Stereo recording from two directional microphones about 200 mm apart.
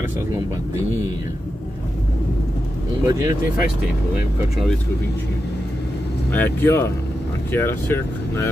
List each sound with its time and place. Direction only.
3.1 s speech: 15° right (ahead or behind)
6.3 s speech: 10° left (ahead or behind)